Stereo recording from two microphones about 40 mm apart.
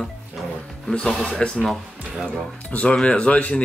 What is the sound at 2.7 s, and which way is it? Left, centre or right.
Speech, left.